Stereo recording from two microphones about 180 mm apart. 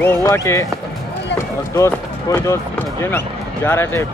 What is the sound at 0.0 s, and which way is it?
Speech, 15° left (ahead or behind).